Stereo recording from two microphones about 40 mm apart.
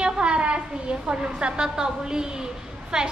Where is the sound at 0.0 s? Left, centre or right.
Right.